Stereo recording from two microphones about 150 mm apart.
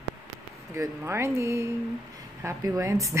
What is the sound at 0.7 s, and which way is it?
A woman's voice, 15° right (ahead or behind).